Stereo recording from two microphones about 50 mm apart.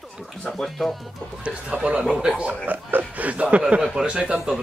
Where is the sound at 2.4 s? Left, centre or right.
Right.